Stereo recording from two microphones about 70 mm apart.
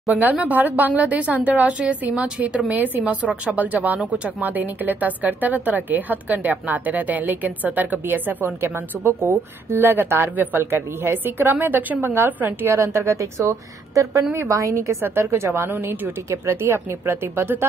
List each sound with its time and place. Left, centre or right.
0.1 s a woman's voice: right
12.6 s a woman's voice: right